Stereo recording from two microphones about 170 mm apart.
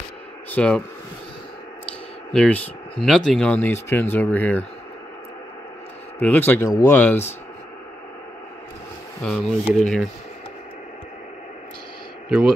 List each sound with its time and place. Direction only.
0.5 s speech: 5° left (ahead or behind)
2.3 s speech: 10° left (ahead or behind)
6.1 s speech: 10° left (ahead or behind)
9.2 s speech: 5° left (ahead or behind)